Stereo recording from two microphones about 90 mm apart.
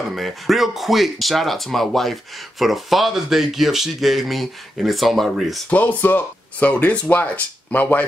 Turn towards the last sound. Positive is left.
turn(degrees=20)  # may be behind; listen again after turning